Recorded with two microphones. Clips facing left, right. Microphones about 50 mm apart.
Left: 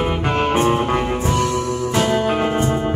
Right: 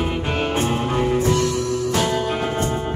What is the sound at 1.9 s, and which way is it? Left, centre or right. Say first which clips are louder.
Music: left 6 dB; left.